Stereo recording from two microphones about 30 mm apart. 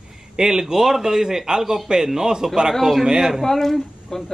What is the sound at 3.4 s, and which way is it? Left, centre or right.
Speech, centre.